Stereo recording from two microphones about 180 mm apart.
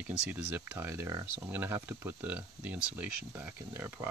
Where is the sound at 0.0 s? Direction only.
10° right (ahead or behind).